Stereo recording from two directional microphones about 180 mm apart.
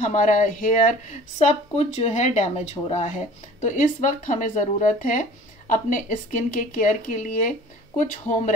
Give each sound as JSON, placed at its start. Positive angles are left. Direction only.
{"t": 0.0, "sound": "speech", "side_deg": 45}